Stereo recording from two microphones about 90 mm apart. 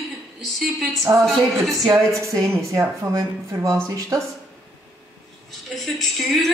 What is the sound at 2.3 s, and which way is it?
Speech, 35° right (ahead or behind).